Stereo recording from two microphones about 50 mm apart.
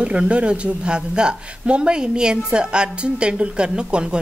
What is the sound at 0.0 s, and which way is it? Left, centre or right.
Speech, right.